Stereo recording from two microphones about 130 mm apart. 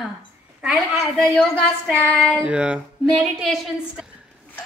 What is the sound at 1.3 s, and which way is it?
Female singing, 10° left (ahead or behind).